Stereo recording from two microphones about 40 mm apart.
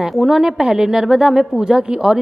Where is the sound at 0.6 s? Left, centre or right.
Centre.